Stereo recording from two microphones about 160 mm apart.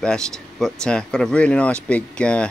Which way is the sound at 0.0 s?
5° left (ahead or behind).